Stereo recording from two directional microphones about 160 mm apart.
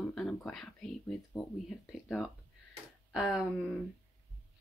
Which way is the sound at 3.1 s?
Centre (ahead or behind).